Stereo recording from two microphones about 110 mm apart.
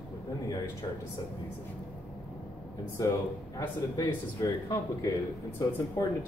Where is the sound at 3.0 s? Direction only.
30° left (ahead or behind).